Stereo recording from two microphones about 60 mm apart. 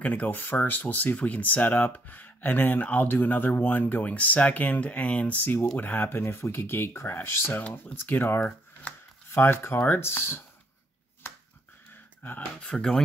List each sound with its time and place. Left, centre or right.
0.0 s speech: left
8.4 s speech: left
9.3 s speech: left
11.9 s a sound: left
12.6 s speech: centre